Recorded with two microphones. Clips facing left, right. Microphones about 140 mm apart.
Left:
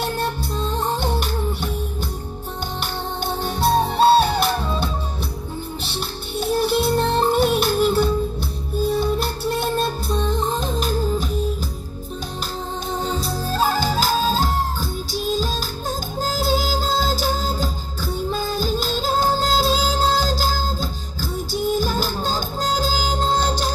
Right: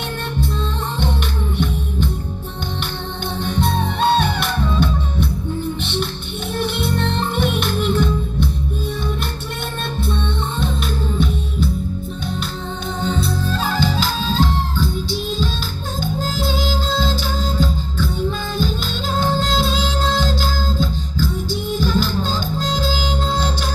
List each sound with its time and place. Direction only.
3.4 s music: 35° left (ahead or behind)
6.5 s music: 35° left (ahead or behind)
13.0 s music: 40° left (ahead or behind)